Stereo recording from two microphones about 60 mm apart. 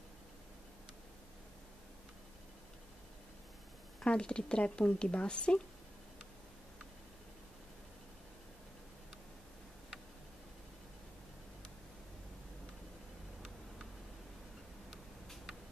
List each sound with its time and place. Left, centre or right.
4.0 s speech: centre